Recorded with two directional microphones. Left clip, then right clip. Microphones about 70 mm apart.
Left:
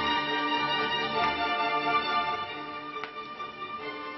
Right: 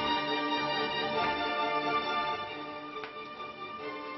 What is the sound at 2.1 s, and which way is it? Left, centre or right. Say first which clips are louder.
Music: left 3 dB; left.